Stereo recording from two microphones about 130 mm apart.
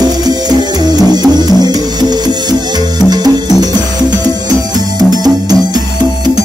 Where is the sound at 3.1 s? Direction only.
30° right (ahead or behind).